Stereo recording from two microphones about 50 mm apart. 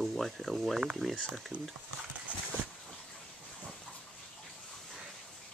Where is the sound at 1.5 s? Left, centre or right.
Right.